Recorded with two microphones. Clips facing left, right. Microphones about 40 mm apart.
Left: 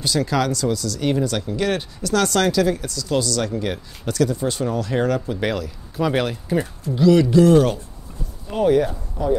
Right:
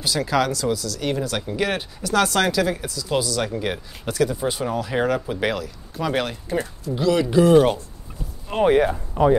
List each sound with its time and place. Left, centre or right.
0.0 s speech: centre
7.2 s speech: centre
8.5 s speech: right
9.2 s speech: right